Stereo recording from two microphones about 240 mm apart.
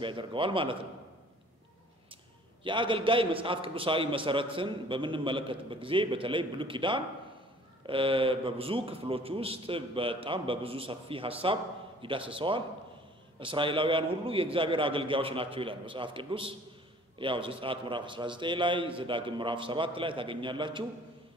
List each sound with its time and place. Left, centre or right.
0.0 s a man's voice: centre
2.6 s a man's voice: right